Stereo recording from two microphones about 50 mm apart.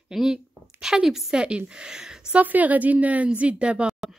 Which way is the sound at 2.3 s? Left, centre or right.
Right.